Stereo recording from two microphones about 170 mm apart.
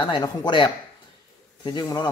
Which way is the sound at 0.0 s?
25° left (ahead or behind).